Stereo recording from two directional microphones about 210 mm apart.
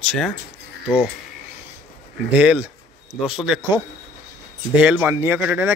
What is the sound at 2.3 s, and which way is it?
Speech, 5° right (ahead or behind).